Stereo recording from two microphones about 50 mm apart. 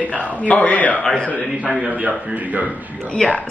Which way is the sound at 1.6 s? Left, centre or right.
Right.